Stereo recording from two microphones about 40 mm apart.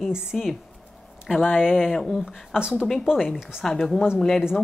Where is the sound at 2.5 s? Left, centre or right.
Right.